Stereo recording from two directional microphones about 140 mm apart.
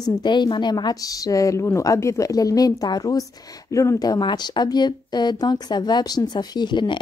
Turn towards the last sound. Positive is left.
turn(degrees=35)  # may be behind; listen again after turning